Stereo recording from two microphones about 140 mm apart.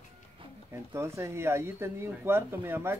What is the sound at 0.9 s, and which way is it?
Speech, 20° right (ahead or behind).